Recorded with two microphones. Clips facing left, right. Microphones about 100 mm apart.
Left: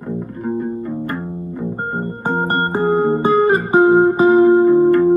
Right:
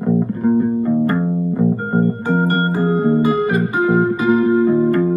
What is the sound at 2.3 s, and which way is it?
Music, 35° left (ahead or behind).